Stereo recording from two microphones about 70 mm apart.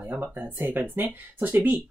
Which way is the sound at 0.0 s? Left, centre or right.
Right.